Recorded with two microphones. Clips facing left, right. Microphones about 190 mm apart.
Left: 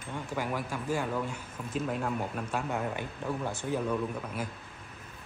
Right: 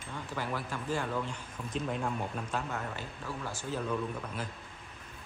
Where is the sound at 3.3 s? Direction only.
20° left (ahead or behind).